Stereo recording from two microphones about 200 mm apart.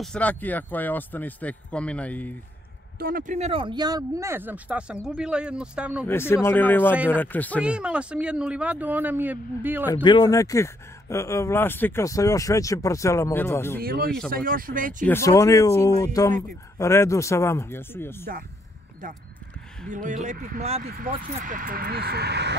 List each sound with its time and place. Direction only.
0.0 s speech: 5° left (ahead or behind)
3.0 s a man's voice: 45° right (ahead or behind); by 6.0 s 5° right (ahead or behind)
6.0 s speech: 10° left (ahead or behind)
7.6 s speech: 5° right (ahead or behind)
10.0 s speech: 20° left (ahead or behind)
13.7 s speech: 50° right (ahead or behind)
15.0 s speech: 15° left (ahead or behind)
19.9 s speech: 40° right (ahead or behind); by 22.6 s 60° right (ahead or behind)